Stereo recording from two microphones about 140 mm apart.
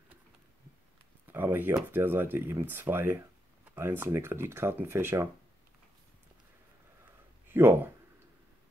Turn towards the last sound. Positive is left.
turn(degrees=-15)  # may be behind; listen again after turning